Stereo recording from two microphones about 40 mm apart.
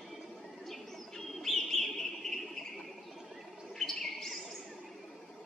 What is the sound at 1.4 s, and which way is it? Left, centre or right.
Bird, centre.